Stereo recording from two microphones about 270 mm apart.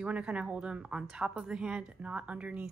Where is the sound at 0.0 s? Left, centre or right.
Centre.